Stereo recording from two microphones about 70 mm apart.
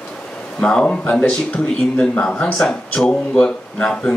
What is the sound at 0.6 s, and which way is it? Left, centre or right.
Speech, centre.